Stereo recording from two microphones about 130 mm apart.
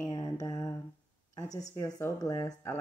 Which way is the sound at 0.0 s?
30° left (ahead or behind).